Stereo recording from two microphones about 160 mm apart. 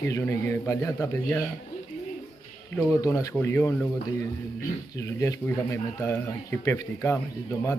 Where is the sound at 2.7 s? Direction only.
15° left (ahead or behind).